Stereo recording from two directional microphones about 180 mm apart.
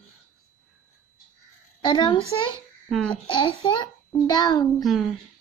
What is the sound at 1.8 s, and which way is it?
Speech, 25° left (ahead or behind).